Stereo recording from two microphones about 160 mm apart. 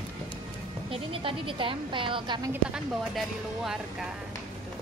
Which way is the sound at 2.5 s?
5° right (ahead or behind).